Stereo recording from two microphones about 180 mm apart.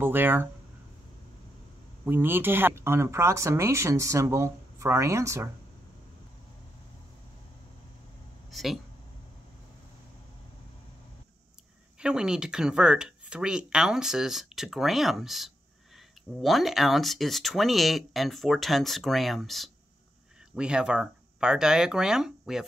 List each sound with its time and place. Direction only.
0.0 s speech: 10° right (ahead or behind)
2.0 s speech: 10° right (ahead or behind)
8.5 s speech: centre (ahead or behind)
12.0 s speech: 5° right (ahead or behind)